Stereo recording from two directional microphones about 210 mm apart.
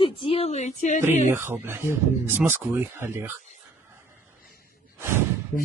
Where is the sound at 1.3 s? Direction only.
10° right (ahead or behind).